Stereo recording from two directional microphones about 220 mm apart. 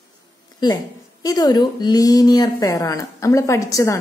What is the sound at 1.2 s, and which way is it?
Speech, 15° left (ahead or behind).